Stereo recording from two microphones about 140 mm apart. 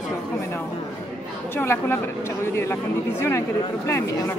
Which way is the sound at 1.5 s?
15° left (ahead or behind).